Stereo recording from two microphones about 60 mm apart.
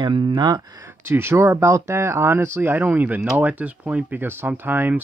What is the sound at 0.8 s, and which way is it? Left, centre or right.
Speech, right.